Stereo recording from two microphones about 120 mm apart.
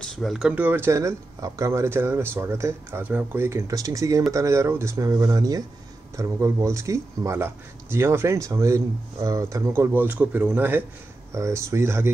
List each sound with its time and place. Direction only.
0.0 s speech: centre (ahead or behind)
0.6 s speech: 20° right (ahead or behind)